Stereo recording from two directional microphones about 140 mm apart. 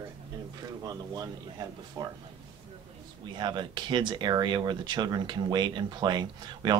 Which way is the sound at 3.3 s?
35° right (ahead or behind).